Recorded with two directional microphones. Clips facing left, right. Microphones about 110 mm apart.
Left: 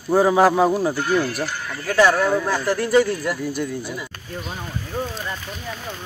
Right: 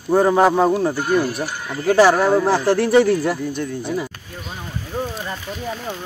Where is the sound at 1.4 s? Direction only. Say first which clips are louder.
Right 3 dB; 20° right (ahead or behind).